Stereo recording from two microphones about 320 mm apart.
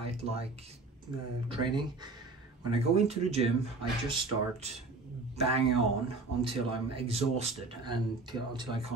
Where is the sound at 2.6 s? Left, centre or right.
Centre.